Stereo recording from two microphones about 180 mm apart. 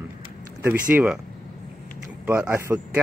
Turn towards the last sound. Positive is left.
turn(degrees=-10)  # may be behind; listen again after turning